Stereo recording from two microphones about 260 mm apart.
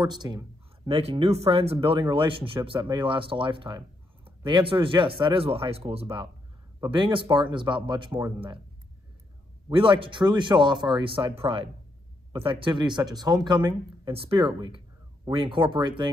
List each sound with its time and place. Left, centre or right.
0.0 s speech: centre
9.7 s speech: centre